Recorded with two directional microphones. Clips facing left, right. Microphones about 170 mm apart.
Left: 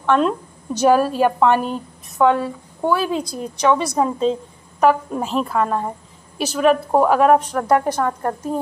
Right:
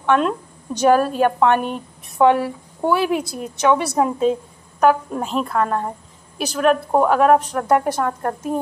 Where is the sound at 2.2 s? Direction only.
15° right (ahead or behind).